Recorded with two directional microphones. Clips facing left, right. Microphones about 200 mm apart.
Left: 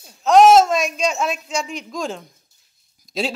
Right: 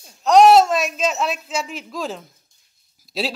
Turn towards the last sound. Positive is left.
turn(degrees=-5)  # may be behind; listen again after turning